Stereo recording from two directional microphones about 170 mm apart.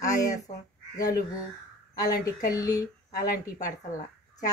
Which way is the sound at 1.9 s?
20° left (ahead or behind).